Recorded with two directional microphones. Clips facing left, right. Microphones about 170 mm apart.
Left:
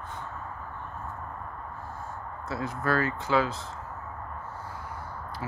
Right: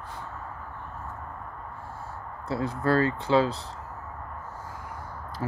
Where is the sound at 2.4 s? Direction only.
30° right (ahead or behind).